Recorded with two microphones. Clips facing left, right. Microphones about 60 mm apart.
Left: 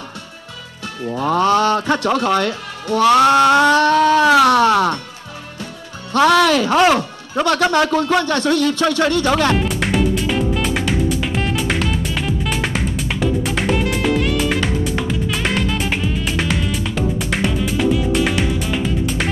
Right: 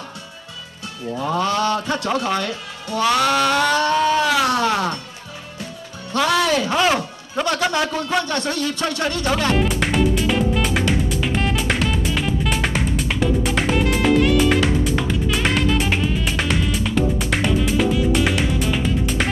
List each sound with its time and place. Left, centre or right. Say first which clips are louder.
1.1 s speech: left 6 dB; left
3.2 s music: left 7 dB; left
3.7 s speech: left 5 dB; left
6.1 s speech: left 6 dB; left
6.4 s speech: left 5 dB; left
9.6 s music: left 1 dB; centre